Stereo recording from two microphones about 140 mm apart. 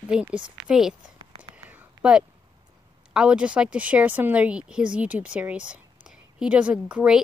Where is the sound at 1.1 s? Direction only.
40° right (ahead or behind).